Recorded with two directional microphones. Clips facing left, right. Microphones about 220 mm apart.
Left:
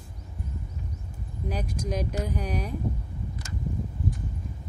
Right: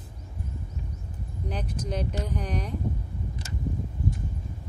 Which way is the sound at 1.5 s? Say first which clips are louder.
Left 1 dB; 10° left (ahead or behind).